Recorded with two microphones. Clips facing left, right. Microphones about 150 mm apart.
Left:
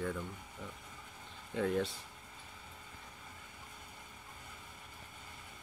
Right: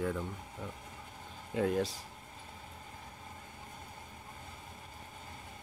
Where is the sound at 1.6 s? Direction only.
35° right (ahead or behind).